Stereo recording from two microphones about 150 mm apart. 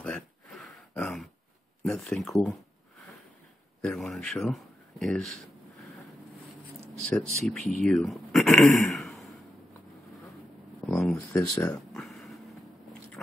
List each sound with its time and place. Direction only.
0.0 s throat clearing: 5° left (ahead or behind)
1.8 s speech: centre (ahead or behind)
3.8 s speech: 5° left (ahead or behind)
7.1 s speech: 5° left (ahead or behind)
10.9 s a sound: centre (ahead or behind)
11.1 s speech: 15° left (ahead or behind)
11.7 s a sound: centre (ahead or behind)